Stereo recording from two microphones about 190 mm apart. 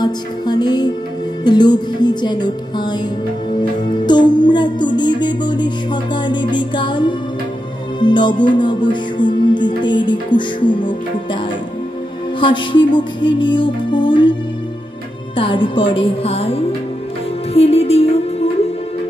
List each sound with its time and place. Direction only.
0.0 s music: 20° left (ahead or behind)
12.4 s music: 25° left (ahead or behind)
15.3 s music: 25° left (ahead or behind)